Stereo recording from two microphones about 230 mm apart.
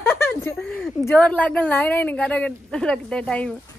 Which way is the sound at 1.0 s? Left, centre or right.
Centre.